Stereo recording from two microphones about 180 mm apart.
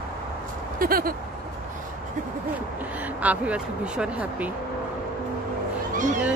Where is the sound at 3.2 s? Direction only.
10° right (ahead or behind).